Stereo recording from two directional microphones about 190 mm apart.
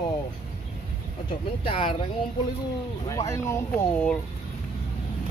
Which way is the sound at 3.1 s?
15° left (ahead or behind).